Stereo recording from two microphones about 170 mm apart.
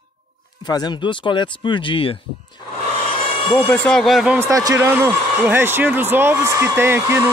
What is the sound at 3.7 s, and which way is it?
Speech, 5° left (ahead or behind).